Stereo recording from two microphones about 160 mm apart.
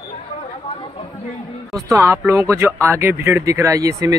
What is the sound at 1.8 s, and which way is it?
Speech, 20° right (ahead or behind).